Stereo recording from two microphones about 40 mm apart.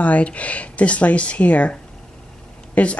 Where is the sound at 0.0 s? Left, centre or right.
Left.